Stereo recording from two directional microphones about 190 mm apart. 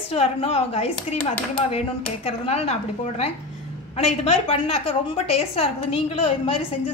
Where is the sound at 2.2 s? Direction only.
30° left (ahead or behind).